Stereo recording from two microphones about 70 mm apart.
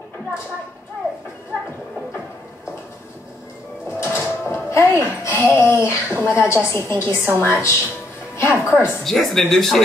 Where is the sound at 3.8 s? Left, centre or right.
Left.